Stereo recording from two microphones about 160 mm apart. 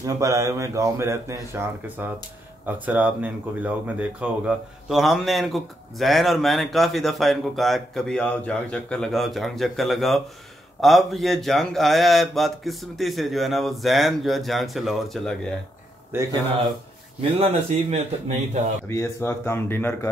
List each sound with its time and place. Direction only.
0.0 s speech: 20° right (ahead or behind); by 15.3 s centre (ahead or behind)
16.1 s speech: 15° right (ahead or behind)
17.2 s speech: 40° right (ahead or behind)
18.9 s speech: 15° left (ahead or behind)